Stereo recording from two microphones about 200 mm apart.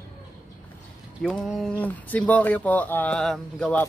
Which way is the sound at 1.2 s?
5° left (ahead or behind).